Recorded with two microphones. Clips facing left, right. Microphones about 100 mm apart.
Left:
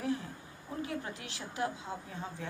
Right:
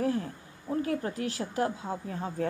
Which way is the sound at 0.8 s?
40° right (ahead or behind).